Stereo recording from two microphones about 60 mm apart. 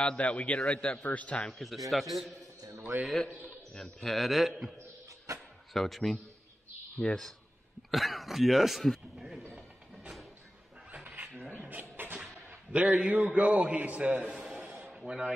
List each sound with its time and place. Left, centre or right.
0.2 s a man's voice: left
1.5 s a man's voice: centre
4.0 s a man's voice: centre
5.3 s a sound: right
5.7 s a man's voice: centre
11.1 s a sound: right
12.7 s a man's voice: right